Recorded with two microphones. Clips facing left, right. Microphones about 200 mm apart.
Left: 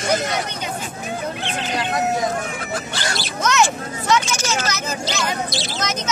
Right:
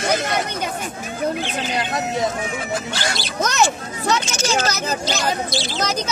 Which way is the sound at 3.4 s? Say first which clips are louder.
Left 1 dB; 35° right (ahead or behind).